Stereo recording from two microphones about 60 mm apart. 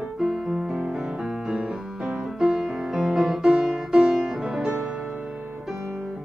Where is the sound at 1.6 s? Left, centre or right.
Centre.